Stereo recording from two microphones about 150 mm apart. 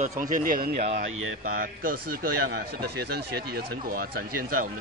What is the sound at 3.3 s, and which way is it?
Speech, 90° right.